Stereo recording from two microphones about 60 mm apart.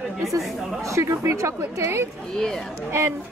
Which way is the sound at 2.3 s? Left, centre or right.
Centre.